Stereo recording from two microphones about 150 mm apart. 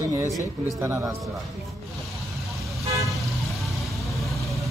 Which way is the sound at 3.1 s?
Centre (ahead or behind).